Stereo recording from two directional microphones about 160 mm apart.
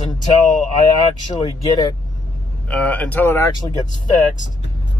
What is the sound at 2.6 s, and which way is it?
Speech, 10° left (ahead or behind).